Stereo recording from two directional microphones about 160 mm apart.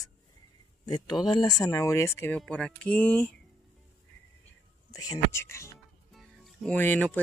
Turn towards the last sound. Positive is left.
turn(degrees=10)  # may be behind; listen again after turning